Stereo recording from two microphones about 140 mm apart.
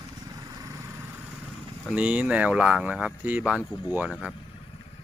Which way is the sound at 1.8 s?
10° right (ahead or behind).